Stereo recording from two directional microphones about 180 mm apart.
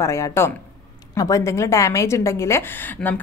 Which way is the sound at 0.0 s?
15° left (ahead or behind).